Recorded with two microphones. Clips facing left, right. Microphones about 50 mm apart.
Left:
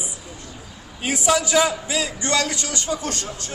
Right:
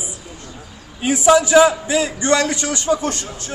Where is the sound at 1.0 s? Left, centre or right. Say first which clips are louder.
Right 7 dB; centre.